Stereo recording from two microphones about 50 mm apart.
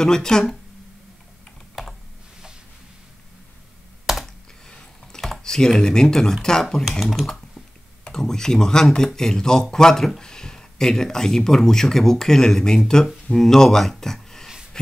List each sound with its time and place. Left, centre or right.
0.0 s speech: centre
4.0 s computer keyboard: centre
4.6 s a sound: centre
5.4 s speech: centre